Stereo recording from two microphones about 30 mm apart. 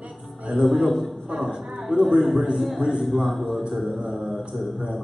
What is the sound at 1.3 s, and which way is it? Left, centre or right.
Speech, centre.